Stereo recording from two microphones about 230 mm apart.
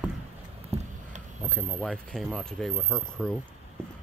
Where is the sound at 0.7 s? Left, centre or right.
Right.